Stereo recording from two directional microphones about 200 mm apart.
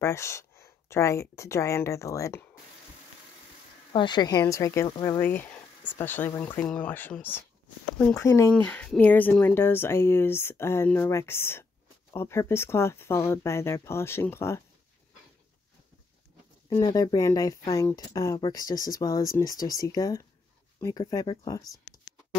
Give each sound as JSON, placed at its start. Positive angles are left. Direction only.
{"t": 0.0, "sound": "speech", "side_deg": 15}
{"t": 3.9, "sound": "speech", "side_deg": 20}
{"t": 16.6, "sound": "speech", "side_deg": 20}